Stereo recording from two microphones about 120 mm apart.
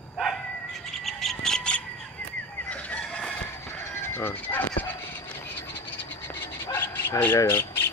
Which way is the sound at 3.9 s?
20° left (ahead or behind).